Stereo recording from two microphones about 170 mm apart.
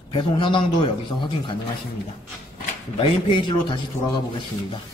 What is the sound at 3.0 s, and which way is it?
Speech, 30° left (ahead or behind).